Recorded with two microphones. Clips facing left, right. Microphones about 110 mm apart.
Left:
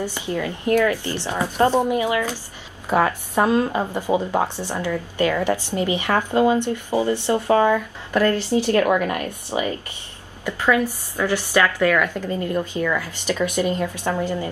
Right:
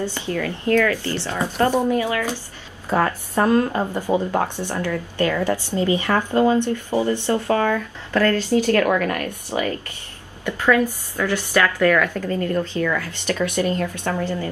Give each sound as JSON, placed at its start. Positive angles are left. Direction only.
{"t": 0.0, "sound": "a woman's voice", "side_deg": 15}